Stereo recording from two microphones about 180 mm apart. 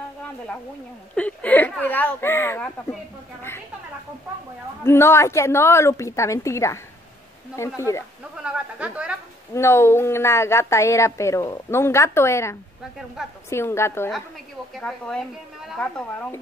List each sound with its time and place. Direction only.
1.1 s a woman's voice: 10° left (ahead or behind)
4.8 s a woman's voice: 15° left (ahead or behind)
8.5 s speech: 5° right (ahead or behind)
9.5 s a woman's voice: 15° left (ahead or behind)